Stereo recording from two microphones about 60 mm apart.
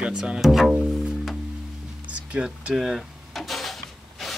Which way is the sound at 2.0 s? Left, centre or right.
Right.